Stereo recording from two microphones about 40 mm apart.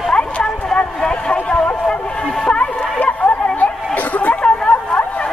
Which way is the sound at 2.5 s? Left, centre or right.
Left.